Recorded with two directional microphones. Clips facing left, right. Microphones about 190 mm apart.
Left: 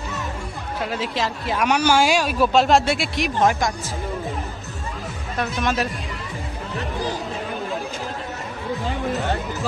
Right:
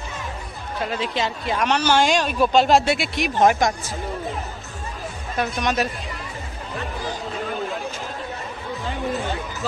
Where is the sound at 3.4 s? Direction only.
20° right (ahead or behind).